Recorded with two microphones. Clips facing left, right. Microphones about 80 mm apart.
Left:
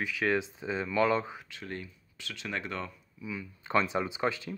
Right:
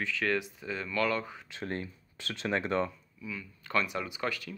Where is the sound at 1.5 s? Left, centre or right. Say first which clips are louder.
Right 4 dB; right.